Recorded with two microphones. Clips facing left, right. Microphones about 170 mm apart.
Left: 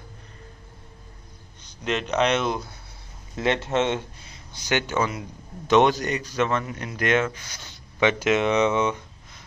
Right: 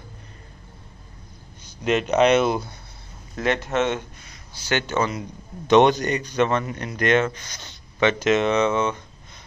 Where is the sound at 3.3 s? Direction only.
25° left (ahead or behind).